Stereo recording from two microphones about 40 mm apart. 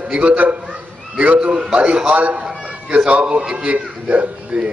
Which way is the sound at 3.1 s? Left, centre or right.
Right.